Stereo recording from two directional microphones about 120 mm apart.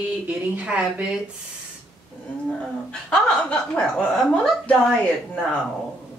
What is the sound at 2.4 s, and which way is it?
Speech, 5° left (ahead or behind).